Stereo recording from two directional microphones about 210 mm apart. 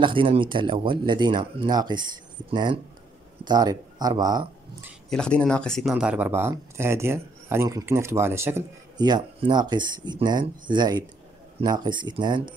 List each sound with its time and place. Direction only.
0.0 s speech: 25° right (ahead or behind)
5.1 s speech: 5° left (ahead or behind); by 12.4 s 20° right (ahead or behind)